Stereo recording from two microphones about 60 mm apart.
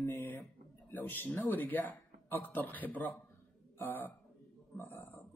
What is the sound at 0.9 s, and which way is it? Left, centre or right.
Speech, left.